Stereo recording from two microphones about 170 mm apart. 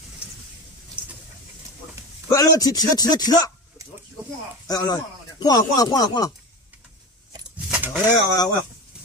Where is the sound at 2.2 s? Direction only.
20° left (ahead or behind).